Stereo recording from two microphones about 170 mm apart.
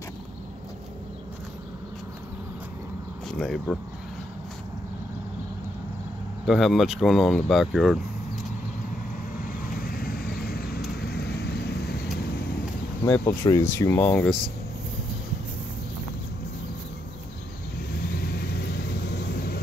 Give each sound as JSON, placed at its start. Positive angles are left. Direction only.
{"t": 3.3, "sound": "speech", "side_deg": 0}
{"t": 6.4, "sound": "speech", "side_deg": 0}
{"t": 9.8, "sound": "vehicle", "side_deg": 60}
{"t": 13.0, "sound": "speech", "side_deg": 15}
{"t": 18.2, "sound": "vehicle", "side_deg": 70}